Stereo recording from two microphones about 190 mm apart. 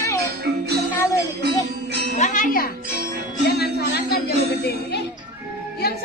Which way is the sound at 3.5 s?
55° left (ahead or behind).